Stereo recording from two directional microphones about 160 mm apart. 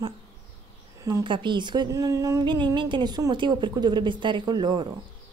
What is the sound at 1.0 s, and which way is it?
Speech, 25° right (ahead or behind).